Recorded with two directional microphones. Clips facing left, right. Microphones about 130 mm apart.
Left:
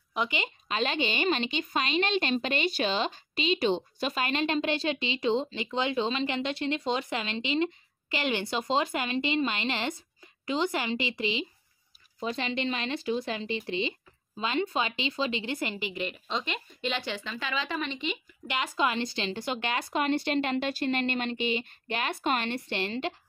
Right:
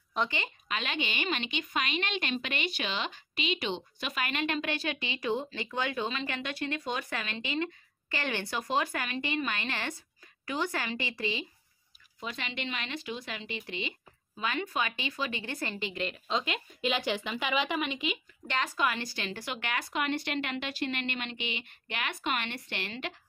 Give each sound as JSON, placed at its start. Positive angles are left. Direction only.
{"t": 0.1, "sound": "a woman's voice", "side_deg": 10}
{"t": 0.7, "sound": "a woman's voice", "side_deg": 35}
{"t": 12.2, "sound": "a woman's voice", "side_deg": 30}
{"t": 15.9, "sound": "speech", "side_deg": 5}
{"t": 18.8, "sound": "a woman's voice", "side_deg": 25}